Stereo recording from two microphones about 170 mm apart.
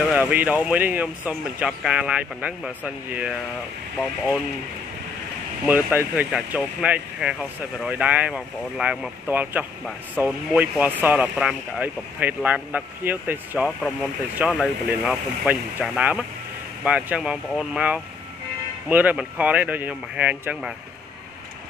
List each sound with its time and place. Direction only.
0.1 s speech: 10° right (ahead or behind)
5.7 s speech: 10° right (ahead or behind)